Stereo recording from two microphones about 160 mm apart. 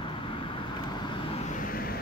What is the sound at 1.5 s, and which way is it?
Vehicle, 65° left (ahead or behind).